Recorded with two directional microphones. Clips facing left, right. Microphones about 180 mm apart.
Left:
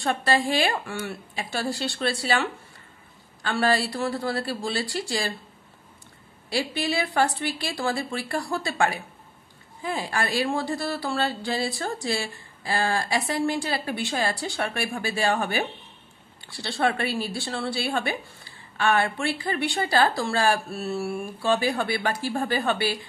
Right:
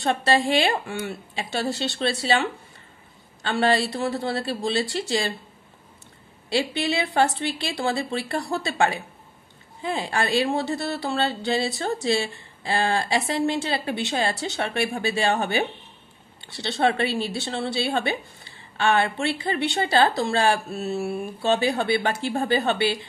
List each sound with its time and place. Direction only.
0.0 s a woman's voice: 25° right (ahead or behind)
3.4 s a woman's voice: 25° right (ahead or behind)
6.5 s a woman's voice: 25° right (ahead or behind)